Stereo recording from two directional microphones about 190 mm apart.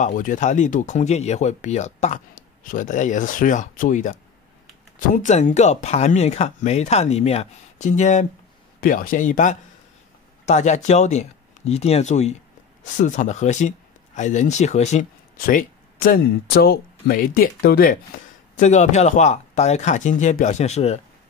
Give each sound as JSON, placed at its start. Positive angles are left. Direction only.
{"t": 0.0, "sound": "speech", "side_deg": 45}
{"t": 15.3, "sound": "speech", "side_deg": 50}
{"t": 18.6, "sound": "speech", "side_deg": 40}